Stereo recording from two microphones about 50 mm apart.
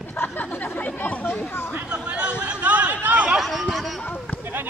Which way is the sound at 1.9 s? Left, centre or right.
Right.